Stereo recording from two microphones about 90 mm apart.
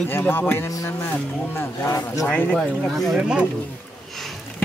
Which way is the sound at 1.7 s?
40° left (ahead or behind).